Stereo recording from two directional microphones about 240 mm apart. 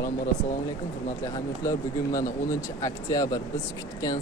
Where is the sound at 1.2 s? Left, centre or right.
Centre.